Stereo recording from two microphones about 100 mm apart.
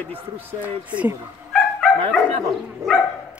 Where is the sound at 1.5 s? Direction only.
5° left (ahead or behind).